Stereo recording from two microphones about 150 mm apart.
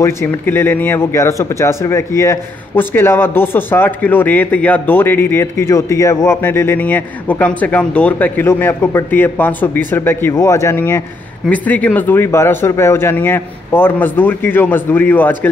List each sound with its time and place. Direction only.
0.0 s speech: 15° left (ahead or behind)